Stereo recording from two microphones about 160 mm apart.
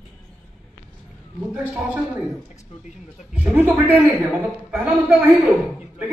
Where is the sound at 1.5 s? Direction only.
10° right (ahead or behind).